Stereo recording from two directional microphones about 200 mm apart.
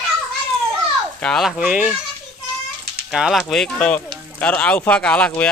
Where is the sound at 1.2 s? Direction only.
Centre (ahead or behind).